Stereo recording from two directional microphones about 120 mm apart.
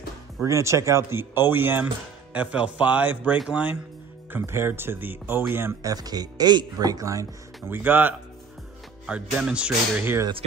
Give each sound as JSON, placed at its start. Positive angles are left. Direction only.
{"t": 0.4, "sound": "speech", "side_deg": -25}
{"t": 4.3, "sound": "speech", "side_deg": -20}